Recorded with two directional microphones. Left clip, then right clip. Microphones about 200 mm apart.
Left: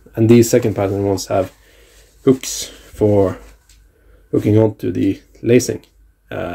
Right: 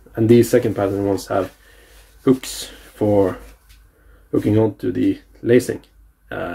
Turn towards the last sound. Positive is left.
turn(degrees=30)  # may be behind; listen again after turning